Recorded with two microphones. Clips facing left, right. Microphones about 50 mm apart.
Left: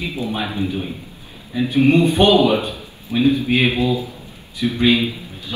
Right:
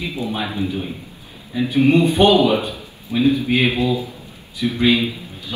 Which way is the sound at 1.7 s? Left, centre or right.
Left.